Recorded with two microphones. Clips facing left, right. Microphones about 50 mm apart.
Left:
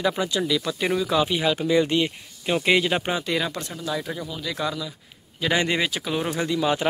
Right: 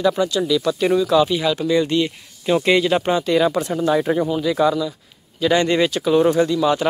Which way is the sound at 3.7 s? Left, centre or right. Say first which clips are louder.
Right 11 dB; right.